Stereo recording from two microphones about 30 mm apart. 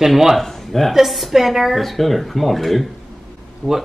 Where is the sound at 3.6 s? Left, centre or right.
Left.